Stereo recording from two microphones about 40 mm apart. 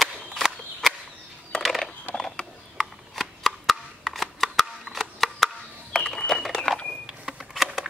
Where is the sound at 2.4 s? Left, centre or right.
Left.